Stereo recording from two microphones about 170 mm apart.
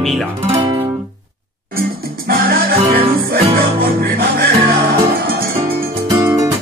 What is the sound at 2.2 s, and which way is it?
Music, 60° right (ahead or behind).